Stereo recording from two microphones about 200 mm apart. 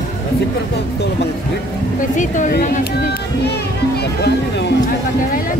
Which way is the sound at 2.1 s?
40° left (ahead or behind).